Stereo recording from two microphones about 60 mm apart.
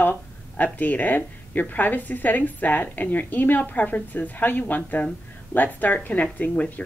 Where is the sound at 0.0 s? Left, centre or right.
Left.